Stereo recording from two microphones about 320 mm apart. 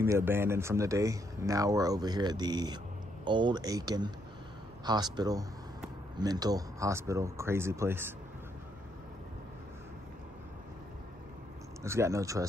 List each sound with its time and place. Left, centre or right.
0.0 s speech: centre
11.8 s speech: centre